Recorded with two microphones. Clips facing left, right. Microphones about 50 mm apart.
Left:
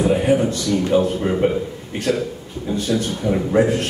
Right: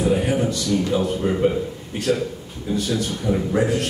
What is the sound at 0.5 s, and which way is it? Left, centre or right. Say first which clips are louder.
Speech: left 3 dB; left.